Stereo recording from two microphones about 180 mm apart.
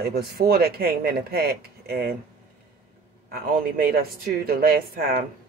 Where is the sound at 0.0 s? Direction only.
60° right (ahead or behind).